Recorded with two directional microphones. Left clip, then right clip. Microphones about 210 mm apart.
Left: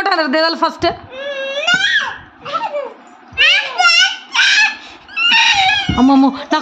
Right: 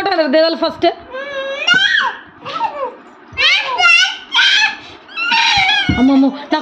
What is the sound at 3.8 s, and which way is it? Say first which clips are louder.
Baby cry: right 1 dB; 20° left (ahead or behind).